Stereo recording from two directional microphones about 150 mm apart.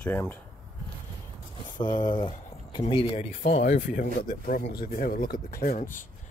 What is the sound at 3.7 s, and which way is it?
Speech, 60° left (ahead or behind).